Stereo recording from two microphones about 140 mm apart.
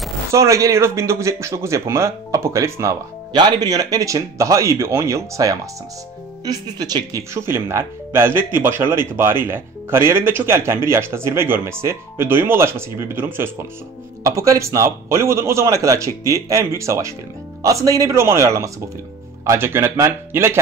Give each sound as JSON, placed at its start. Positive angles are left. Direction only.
{"t": 0.3, "sound": "speech", "side_deg": -20}